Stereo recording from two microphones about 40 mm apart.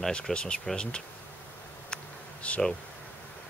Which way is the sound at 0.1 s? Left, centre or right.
Left.